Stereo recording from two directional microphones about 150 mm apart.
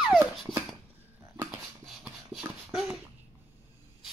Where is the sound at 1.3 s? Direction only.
25° right (ahead or behind).